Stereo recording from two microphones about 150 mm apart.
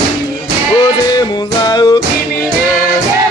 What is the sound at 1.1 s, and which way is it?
Music, 30° left (ahead or behind).